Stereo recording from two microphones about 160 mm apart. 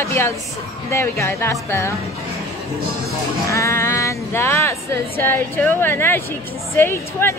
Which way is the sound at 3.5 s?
20° left (ahead or behind).